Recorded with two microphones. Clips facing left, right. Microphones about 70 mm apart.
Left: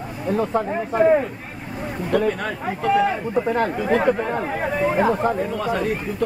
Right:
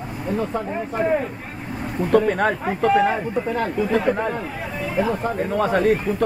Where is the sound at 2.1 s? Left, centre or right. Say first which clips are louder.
Right 4 dB; right.